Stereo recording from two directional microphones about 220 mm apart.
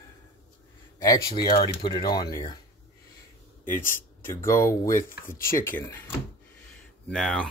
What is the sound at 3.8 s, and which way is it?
Speech, 10° left (ahead or behind).